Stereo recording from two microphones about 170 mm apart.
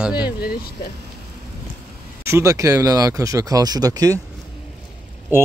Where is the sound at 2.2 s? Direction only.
15° right (ahead or behind).